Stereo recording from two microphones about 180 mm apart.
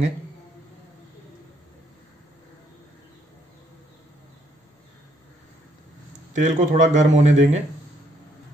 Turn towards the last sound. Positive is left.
turn(degrees=-40)  # may be behind; listen again after turning